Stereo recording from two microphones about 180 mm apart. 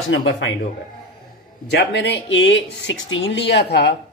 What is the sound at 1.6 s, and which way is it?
Speech, 70° left (ahead or behind).